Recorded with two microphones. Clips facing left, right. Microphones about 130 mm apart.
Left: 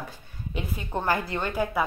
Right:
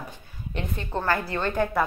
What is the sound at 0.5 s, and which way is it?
A woman's voice, 10° left (ahead or behind).